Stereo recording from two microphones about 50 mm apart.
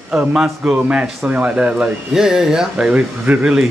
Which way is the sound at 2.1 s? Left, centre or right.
Centre.